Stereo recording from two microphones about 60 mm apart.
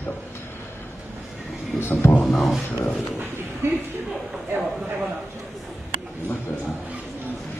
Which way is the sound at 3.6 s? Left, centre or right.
Right.